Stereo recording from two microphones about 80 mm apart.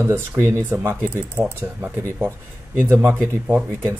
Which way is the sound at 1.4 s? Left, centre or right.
Right.